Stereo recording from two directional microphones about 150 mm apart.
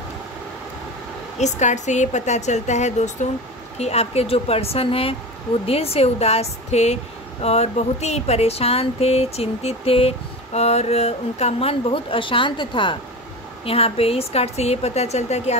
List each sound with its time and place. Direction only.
1.4 s speech: 50° left (ahead or behind)